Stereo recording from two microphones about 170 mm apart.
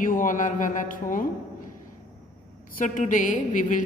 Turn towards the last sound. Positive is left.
turn(degrees=50)  # may be behind; listen again after turning